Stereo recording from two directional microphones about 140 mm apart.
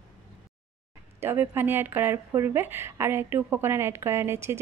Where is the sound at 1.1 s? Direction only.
15° right (ahead or behind).